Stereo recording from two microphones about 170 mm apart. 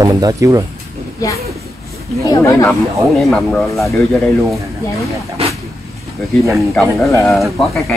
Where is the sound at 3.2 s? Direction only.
5° left (ahead or behind).